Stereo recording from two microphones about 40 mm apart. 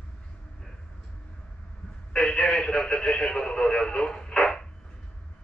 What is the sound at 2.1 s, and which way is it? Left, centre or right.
Radio, left.